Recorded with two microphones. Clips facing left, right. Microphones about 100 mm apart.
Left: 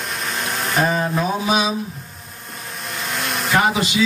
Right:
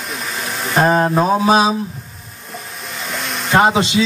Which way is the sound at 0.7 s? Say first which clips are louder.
Right 6 dB; 40° right (ahead or behind).